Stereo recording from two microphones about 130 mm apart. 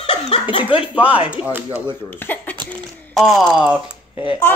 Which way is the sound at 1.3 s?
10° right (ahead or behind).